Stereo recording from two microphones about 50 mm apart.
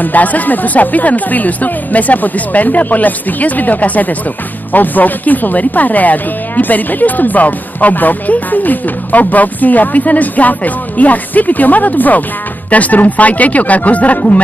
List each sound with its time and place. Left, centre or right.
0.0 s speech: left